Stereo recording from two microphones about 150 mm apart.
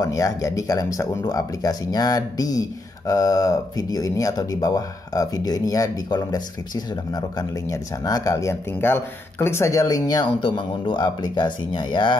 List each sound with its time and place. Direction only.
0.0 s speech: 25° left (ahead or behind)